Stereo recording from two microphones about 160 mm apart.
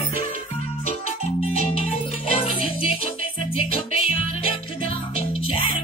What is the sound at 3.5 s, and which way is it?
Music, 35° left (ahead or behind).